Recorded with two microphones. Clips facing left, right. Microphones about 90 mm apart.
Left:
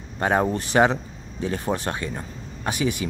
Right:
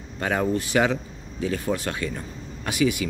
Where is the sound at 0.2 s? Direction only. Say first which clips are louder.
Left 2 dB; 35° left (ahead or behind).